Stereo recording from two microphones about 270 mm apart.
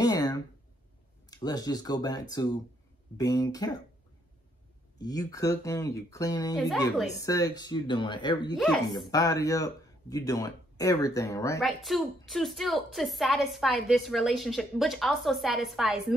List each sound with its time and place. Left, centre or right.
0.0 s a sound: centre
1.3 s speech: centre
4.9 s speech: centre
8.5 s a woman's voice: centre
9.1 s speech: centre
11.6 s a woman's voice: centre